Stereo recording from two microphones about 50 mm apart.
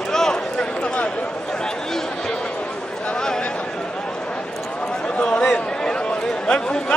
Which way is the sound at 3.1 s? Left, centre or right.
Centre.